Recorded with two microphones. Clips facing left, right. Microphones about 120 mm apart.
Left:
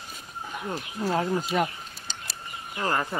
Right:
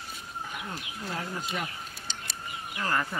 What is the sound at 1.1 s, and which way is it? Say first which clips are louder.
Speech: left 9 dB; 55° left (ahead or behind).